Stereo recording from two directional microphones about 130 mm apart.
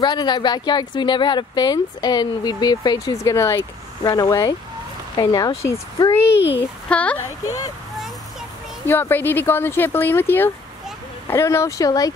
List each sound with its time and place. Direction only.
0.0 s speech: 35° left (ahead or behind)
6.9 s speech: 10° left (ahead or behind)
8.8 s speech: 15° left (ahead or behind)